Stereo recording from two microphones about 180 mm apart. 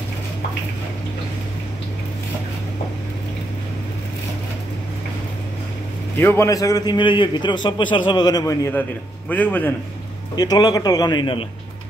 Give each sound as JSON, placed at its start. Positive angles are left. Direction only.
{"t": 6.1, "sound": "a man's voice", "side_deg": 15}
{"t": 10.3, "sound": "a man's voice", "side_deg": 20}